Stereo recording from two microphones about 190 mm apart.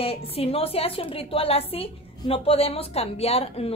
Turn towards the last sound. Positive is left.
turn(degrees=30)  # may be behind; listen again after turning